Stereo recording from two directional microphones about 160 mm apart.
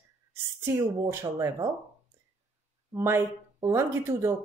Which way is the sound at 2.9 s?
15° right (ahead or behind).